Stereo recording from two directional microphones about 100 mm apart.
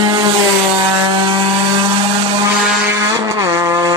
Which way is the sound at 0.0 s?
45° right (ahead or behind).